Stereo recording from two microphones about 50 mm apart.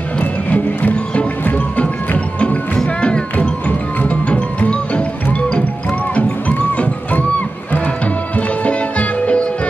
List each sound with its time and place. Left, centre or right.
0.2 s music: left
2.4 s music: left
6.8 s music: left
8.4 s music: left